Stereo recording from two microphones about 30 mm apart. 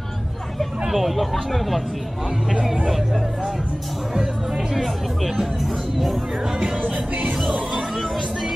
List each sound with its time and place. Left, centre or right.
0.8 s speech: centre
2.6 s speech: centre
4.7 s speech: centre
6.8 s music: right